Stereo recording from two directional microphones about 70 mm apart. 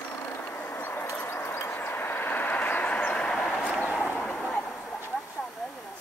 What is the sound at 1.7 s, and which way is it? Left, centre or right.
Vehicle, left.